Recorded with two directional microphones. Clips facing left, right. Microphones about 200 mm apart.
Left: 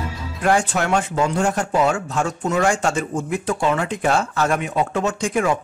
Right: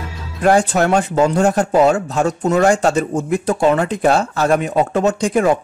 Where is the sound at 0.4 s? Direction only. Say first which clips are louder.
Right 6 dB; 40° right (ahead or behind).